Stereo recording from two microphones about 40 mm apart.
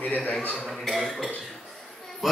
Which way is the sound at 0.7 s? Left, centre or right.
Centre.